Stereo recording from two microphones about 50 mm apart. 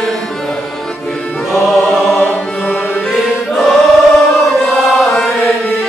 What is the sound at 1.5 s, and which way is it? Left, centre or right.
Music, centre.